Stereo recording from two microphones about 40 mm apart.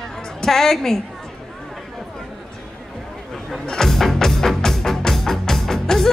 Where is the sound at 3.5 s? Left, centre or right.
Centre.